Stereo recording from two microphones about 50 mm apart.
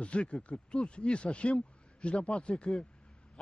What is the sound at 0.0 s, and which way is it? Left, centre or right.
Speech, centre.